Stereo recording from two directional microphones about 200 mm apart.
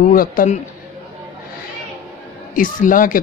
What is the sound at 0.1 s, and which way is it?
Speech, 45° left (ahead or behind).